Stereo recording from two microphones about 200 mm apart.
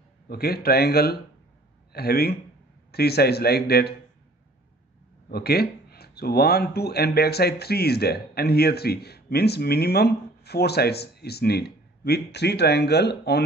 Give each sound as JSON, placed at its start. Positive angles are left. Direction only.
{"t": 0.3, "sound": "speech", "side_deg": 50}
{"t": 5.3, "sound": "speech", "side_deg": 50}